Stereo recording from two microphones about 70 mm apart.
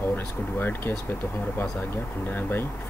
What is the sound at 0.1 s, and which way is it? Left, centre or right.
Speech, left.